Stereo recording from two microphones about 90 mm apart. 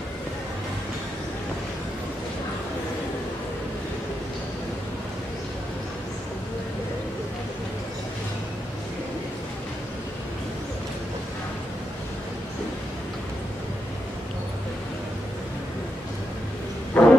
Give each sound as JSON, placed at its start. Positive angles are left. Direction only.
{"t": 17.0, "sound": "wild animals", "side_deg": 20}